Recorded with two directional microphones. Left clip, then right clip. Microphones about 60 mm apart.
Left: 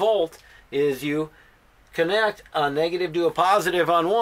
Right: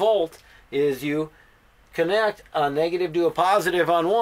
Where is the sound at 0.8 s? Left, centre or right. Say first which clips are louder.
Even; centre.